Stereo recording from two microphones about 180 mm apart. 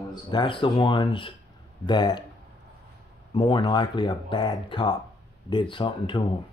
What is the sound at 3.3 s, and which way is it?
Speech, 25° left (ahead or behind).